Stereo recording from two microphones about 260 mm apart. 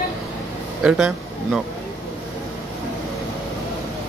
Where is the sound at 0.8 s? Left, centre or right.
Centre.